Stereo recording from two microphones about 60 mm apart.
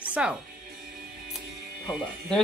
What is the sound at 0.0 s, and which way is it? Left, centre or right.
Music, right.